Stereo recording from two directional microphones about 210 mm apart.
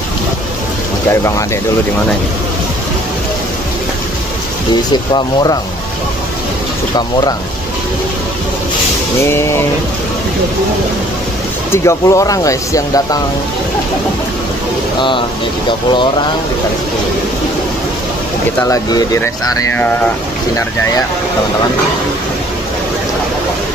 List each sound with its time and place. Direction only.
4.9 s speech: 20° left (ahead or behind)
9.3 s speech: 10° left (ahead or behind)
11.7 s speech: 15° left (ahead or behind)
15.0 s speech: 25° left (ahead or behind)
18.6 s speech: 15° left (ahead or behind)